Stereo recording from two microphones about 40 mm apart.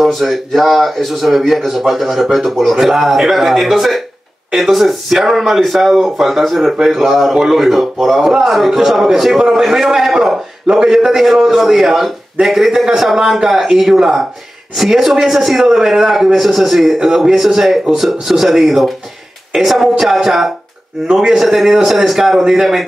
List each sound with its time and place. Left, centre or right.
0.0 s speech: centre
2.7 s a man's voice: centre
21.4 s a man's voice: centre